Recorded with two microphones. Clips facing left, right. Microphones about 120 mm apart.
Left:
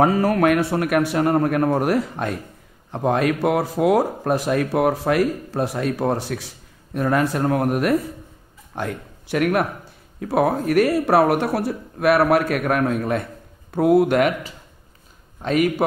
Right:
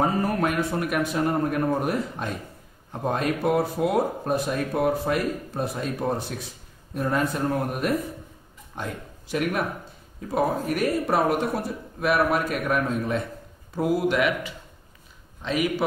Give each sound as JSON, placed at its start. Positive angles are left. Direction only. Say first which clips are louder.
{"t": 0.0, "sound": "speech", "louder": "left 7 dB", "side_deg": 85}
{"t": 2.9, "sound": "speech", "louder": "left 6 dB", "side_deg": 85}
{"t": 8.7, "sound": "a man's voice", "louder": "left 6 dB", "side_deg": 70}
{"t": 15.4, "sound": "a man's voice", "louder": "left 6 dB", "side_deg": 50}